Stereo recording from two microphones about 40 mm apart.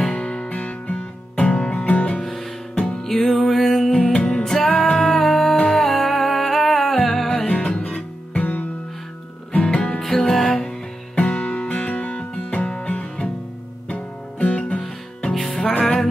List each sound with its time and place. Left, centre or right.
0.0 s music: left
3.0 s music: centre
4.1 s music: left
5.1 s music: centre
7.4 s music: left
8.3 s music: left
9.5 s music: left
9.9 s music: centre; by 13.3 s left
13.8 s guitar: left
15.4 s music: centre